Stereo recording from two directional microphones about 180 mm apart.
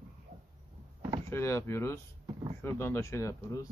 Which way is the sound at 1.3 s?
15° left (ahead or behind).